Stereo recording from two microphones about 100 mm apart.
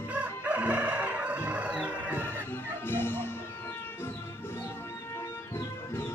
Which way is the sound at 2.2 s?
20° left (ahead or behind).